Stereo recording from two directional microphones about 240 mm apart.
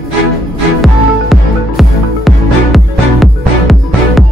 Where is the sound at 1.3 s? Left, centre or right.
Centre.